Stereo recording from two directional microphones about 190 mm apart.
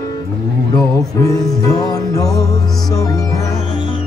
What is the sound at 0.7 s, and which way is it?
Music, 20° left (ahead or behind).